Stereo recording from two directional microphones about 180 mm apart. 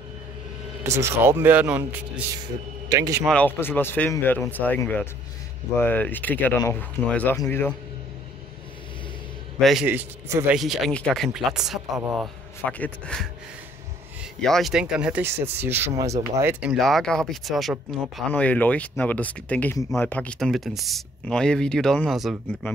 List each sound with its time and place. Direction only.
0.9 s speech: 15° right (ahead or behind)
2.3 s speech: 20° right (ahead or behind)
3.3 s speech: 10° left (ahead or behind)
9.6 s a man's voice: centre (ahead or behind)
9.8 s speech: 15° right (ahead or behind)
10.5 s speech: centre (ahead or behind)
14.4 s speech: centre (ahead or behind)
16.7 s speech: centre (ahead or behind)